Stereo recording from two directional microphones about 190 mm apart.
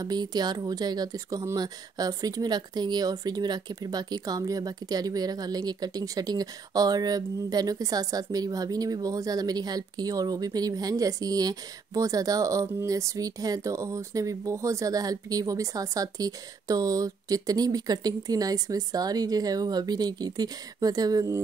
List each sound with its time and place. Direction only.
0.0 s speech: 20° right (ahead or behind)